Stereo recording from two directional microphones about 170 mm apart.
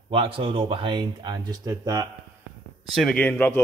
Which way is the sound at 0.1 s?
30° right (ahead or behind).